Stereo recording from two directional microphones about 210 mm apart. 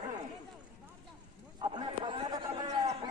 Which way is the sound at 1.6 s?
20° right (ahead or behind).